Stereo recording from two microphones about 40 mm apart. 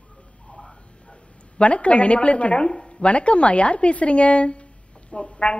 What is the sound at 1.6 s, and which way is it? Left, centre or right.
A woman's voice, left.